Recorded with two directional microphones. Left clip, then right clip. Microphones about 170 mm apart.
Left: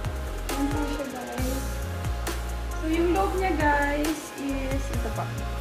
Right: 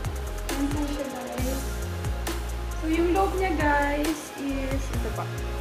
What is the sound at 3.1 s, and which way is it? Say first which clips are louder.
Speech: right 1 dB; centre (ahead or behind).